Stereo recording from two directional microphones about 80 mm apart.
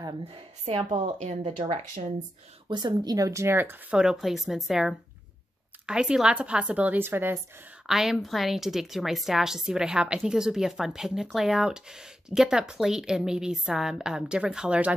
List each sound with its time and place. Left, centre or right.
0.8 s speech: right
2.7 s speech: right
3.9 s a woman's voice: centre; by 7.3 s right
7.8 s a woman's voice: centre